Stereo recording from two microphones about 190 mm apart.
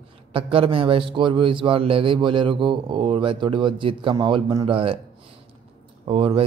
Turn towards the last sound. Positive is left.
turn(degrees=-30)  # may be behind; listen again after turning